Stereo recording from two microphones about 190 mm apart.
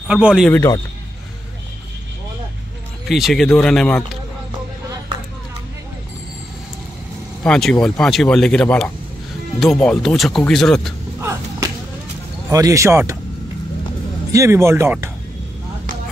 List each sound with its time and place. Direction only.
0.1 s speech: 5° right (ahead or behind)
0.5 s speech: 15° left (ahead or behind)
3.1 s speech: centre (ahead or behind)
7.4 s speech: 5° left (ahead or behind)
12.4 s speech: 15° right (ahead or behind)
14.3 s speech: 15° right (ahead or behind)